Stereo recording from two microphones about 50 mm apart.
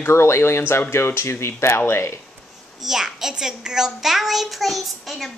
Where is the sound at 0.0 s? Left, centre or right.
Left.